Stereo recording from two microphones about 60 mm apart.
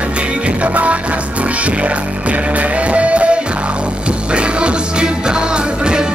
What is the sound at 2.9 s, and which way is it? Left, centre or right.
Music, right.